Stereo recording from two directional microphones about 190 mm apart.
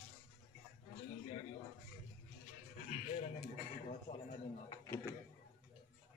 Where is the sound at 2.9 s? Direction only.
45° left (ahead or behind).